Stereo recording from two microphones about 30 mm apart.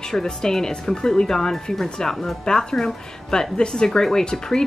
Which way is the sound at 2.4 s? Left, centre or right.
Left.